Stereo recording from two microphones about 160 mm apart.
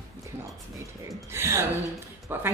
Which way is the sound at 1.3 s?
15° right (ahead or behind).